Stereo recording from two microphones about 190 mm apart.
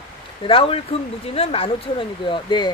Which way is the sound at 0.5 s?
30° left (ahead or behind).